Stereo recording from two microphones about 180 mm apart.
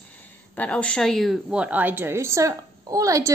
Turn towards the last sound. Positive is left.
turn(degrees=-20)  # may be behind; listen again after turning